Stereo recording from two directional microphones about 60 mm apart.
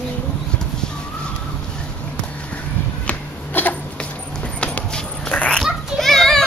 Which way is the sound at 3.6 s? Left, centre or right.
Left.